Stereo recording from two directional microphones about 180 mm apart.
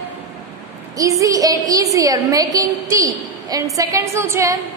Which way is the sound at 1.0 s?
20° right (ahead or behind).